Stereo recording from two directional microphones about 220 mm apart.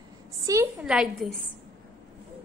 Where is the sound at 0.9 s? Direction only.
Centre (ahead or behind).